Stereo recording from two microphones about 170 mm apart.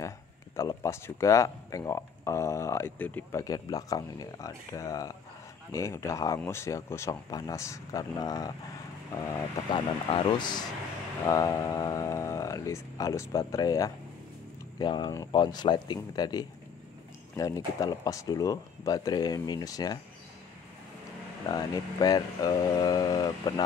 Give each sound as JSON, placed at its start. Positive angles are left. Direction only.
{"t": 0.6, "sound": "speech", "side_deg": 15}
{"t": 9.7, "sound": "speech", "side_deg": 30}
{"t": 21.5, "sound": "speech", "side_deg": 20}